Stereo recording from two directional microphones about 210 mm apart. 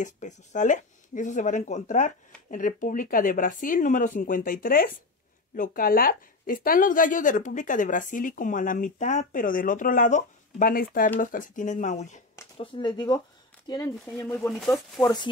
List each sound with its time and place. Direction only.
0.0 s speech: 35° left (ahead or behind)
12.5 s speech: 20° left (ahead or behind)
15.0 s speech: centre (ahead or behind)